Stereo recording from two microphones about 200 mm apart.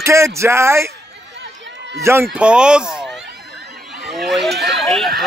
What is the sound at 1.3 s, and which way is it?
Run, 65° right (ahead or behind).